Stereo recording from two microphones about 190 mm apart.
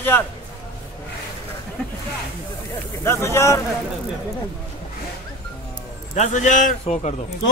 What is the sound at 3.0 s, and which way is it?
Speech, 15° left (ahead or behind).